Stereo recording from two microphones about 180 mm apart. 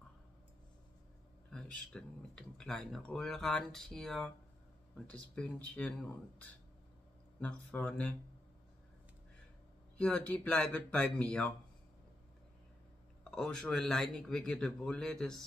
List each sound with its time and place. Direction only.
1.5 s speech: 5° left (ahead or behind)
9.9 s speech: 5° left (ahead or behind)
13.2 s speech: 5° left (ahead or behind)